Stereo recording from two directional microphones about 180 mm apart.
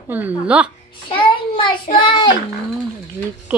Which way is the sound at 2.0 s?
25° left (ahead or behind).